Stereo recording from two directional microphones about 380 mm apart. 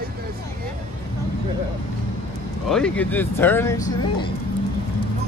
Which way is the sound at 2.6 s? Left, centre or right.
Centre.